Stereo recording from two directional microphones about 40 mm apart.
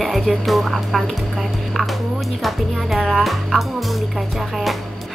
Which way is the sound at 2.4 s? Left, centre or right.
Centre.